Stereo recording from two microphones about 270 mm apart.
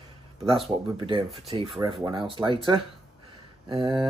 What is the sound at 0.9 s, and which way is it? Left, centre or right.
Speech, centre.